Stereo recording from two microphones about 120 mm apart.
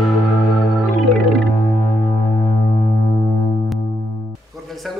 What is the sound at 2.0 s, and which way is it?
Music, 55° left (ahead or behind).